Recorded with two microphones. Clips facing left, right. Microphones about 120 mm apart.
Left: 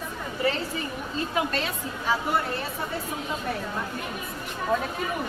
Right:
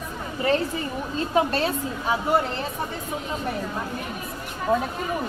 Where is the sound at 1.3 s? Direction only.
35° right (ahead or behind).